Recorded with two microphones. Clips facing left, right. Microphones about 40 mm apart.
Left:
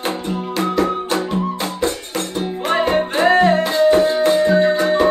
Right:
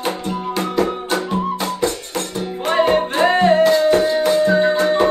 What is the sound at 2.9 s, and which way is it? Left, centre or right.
Music, centre.